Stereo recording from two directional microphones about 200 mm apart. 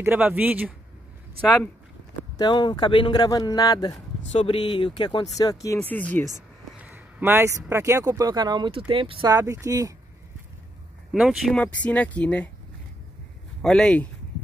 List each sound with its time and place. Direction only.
0.0 s speech: 10° right (ahead or behind)
2.3 s speech: 20° left (ahead or behind)
4.3 s speech: 30° left (ahead or behind); by 6.2 s 10° left (ahead or behind)
6.8 s speech: 10° right (ahead or behind)
11.1 s speech: centre (ahead or behind)
13.6 s speech: 5° left (ahead or behind)